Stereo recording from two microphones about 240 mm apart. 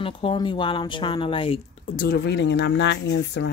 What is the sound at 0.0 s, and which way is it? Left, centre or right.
Speech, left.